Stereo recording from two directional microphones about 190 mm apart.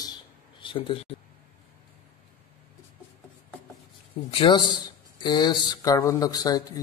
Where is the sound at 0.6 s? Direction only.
25° left (ahead or behind).